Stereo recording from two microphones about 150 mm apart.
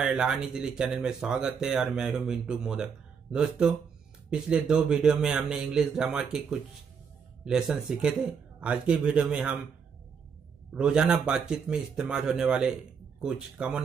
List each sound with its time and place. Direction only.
0.0 s speech: 5° right (ahead or behind)
7.4 s speech: 5° right (ahead or behind)
10.7 s speech: 5° right (ahead or behind)